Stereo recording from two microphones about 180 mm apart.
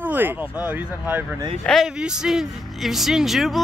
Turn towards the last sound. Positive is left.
turn(degrees=0)  # may be behind; listen again after turning